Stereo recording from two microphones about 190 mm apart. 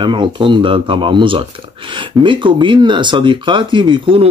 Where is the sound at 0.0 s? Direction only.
25° right (ahead or behind).